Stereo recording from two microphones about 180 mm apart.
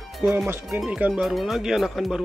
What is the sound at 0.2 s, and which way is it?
Speech, 5° right (ahead or behind).